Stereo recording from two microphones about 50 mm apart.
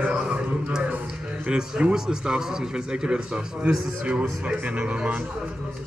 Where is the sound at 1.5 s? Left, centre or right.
Centre.